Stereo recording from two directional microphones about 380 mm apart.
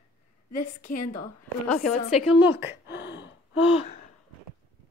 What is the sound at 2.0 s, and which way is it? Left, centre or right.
Speech, centre.